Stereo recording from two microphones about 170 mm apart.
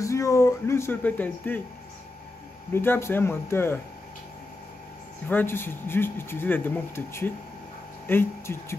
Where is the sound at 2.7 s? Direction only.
15° left (ahead or behind).